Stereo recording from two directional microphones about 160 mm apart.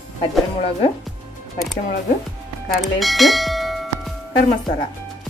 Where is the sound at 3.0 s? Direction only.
Centre (ahead or behind).